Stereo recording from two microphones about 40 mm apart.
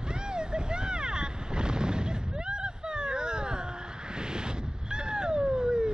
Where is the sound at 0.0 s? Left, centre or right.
Right.